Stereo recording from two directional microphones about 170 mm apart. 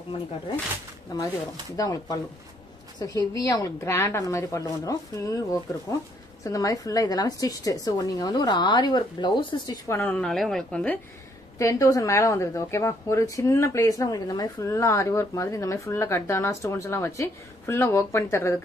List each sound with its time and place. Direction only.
1.1 s a woman's voice: 20° left (ahead or behind)
9.8 s a woman's voice: 10° left (ahead or behind)
11.5 s a woman's voice: 15° left (ahead or behind)